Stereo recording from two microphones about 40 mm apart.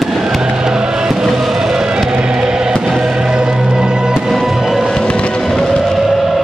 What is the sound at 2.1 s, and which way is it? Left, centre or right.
Choir, right.